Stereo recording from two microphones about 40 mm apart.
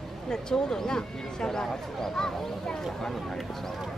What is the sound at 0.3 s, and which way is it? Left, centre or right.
Speech, centre.